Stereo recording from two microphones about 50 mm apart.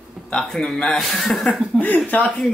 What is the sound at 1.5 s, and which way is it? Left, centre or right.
Speech, left.